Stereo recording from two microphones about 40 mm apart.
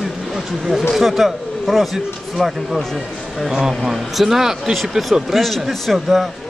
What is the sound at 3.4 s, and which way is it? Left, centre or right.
Speech, centre.